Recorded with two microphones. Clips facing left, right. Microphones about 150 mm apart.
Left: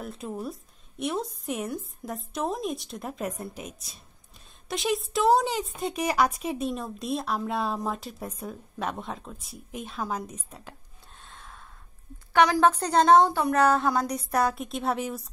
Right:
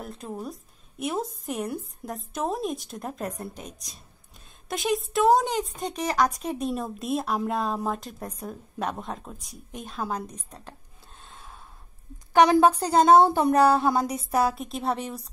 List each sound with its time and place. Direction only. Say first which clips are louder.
0.0 s a woman's voice: left 1 dB; centre (ahead or behind)
11.2 s a sound: right 1 dB; 5° right (ahead or behind)
12.5 s speech: right 2 dB; 10° right (ahead or behind)
13.2 s a woman's voice: right 3 dB; 20° right (ahead or behind); by 15.2 s centre (ahead or behind)